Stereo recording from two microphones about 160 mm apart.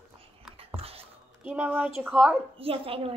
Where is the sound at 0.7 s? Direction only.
35° right (ahead or behind).